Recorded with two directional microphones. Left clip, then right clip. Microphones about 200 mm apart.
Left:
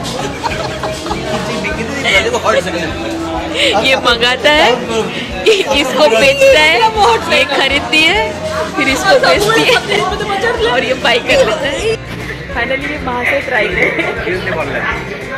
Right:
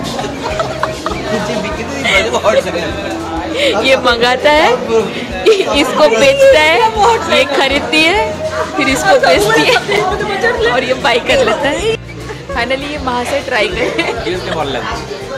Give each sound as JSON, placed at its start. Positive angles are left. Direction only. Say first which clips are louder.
{"t": 3.5, "sound": "speech", "louder": "even", "side_deg": -5}
{"t": 7.0, "sound": "speech", "louder": "even", "side_deg": 10}
{"t": 7.3, "sound": "speech", "louder": "even", "side_deg": -10}
{"t": 11.2, "sound": "a woman's voice", "louder": "even", "side_deg": -20}